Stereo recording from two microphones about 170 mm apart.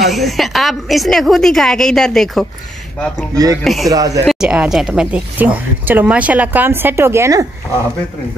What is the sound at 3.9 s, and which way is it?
Speech, 20° right (ahead or behind).